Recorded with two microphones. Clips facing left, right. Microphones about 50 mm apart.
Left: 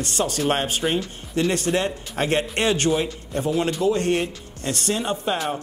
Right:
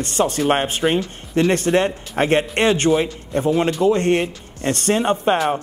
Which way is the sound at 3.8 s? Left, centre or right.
Right.